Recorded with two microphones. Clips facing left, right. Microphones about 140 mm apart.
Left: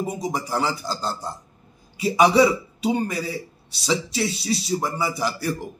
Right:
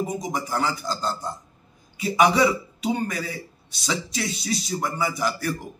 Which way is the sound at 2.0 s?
35° left (ahead or behind).